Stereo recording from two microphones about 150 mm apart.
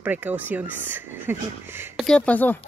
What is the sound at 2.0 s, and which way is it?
Speech, 5° left (ahead or behind).